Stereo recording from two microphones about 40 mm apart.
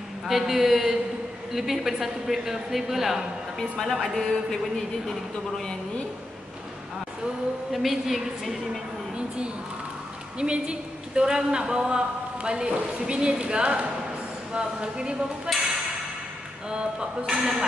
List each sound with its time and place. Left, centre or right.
0.3 s speech: centre
3.5 s speech: centre
7.7 s a woman's voice: centre
10.4 s a woman's voice: right
16.6 s a woman's voice: centre